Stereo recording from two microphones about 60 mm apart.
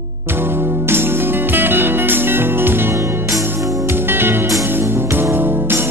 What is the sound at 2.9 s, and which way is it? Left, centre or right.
Music, right.